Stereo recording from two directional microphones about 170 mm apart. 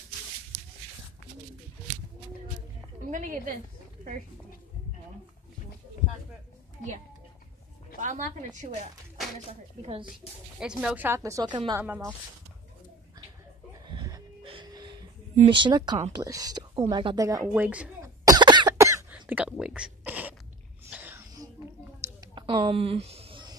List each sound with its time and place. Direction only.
3.1 s a sound: 50° right (ahead or behind)
8.0 s a woman's voice: 45° right (ahead or behind)
10.6 s a woman's voice: 5° right (ahead or behind); by 11.8 s 25° right (ahead or behind)
11.8 s a woman's voice: 10° right (ahead or behind)
13.8 s a sound: 25° right (ahead or behind)
14.5 s music: 25° right (ahead or behind)
15.4 s speech: 30° right (ahead or behind)
17.6 s throat clearing: 10° right (ahead or behind)
18.2 s cough: 25° right (ahead or behind)
19.1 s whispering: 5° right (ahead or behind)
20.9 s sneeze: 10° right (ahead or behind)
22.0 s a sound: 25° right (ahead or behind)